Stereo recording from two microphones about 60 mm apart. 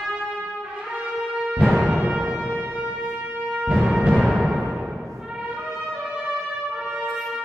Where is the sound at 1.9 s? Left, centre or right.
Right.